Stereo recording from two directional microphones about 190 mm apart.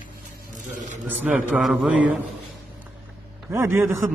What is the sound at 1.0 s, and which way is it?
A man's voice, 10° right (ahead or behind).